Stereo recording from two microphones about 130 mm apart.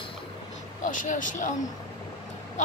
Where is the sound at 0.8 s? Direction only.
85° left.